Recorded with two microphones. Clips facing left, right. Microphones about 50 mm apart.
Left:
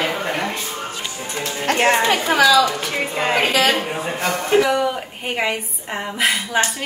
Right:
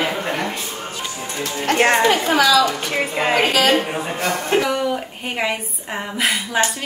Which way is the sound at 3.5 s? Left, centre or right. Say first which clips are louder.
Right 2 dB; left.